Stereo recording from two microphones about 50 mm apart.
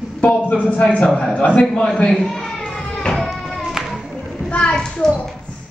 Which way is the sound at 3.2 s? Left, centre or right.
Centre.